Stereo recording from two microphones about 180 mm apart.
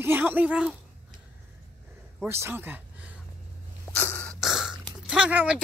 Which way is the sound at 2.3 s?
15° right (ahead or behind).